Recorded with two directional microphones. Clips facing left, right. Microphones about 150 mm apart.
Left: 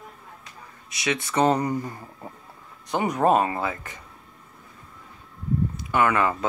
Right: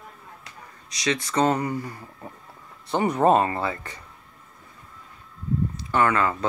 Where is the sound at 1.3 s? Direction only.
15° left (ahead or behind).